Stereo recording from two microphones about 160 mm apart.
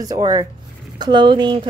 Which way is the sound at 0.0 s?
25° right (ahead or behind).